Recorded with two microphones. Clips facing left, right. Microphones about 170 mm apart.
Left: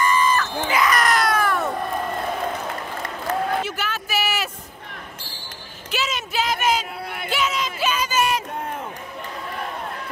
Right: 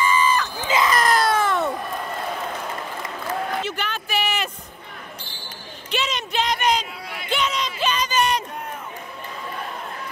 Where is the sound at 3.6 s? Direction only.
5° left (ahead or behind).